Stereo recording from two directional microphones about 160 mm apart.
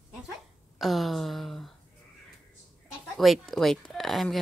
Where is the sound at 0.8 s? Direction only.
Centre (ahead or behind).